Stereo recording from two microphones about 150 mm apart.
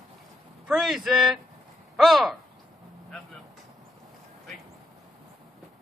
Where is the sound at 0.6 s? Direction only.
5° right (ahead or behind).